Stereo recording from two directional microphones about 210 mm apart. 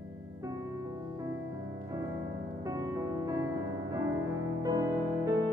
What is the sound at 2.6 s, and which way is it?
Music, 15° right (ahead or behind).